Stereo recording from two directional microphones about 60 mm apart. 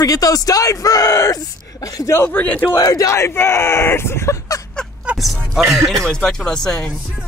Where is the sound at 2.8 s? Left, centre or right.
Left.